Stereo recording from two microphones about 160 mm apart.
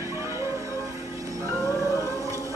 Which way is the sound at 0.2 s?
20° right (ahead or behind).